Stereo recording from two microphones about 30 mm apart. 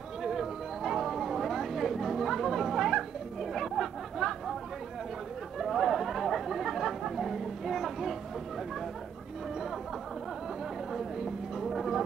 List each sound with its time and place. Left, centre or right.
0.2 s chatter: centre
5.6 s chatter: centre
10.9 s a sound: centre